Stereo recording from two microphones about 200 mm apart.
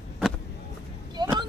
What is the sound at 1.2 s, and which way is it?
Vehicle, 20° right (ahead or behind).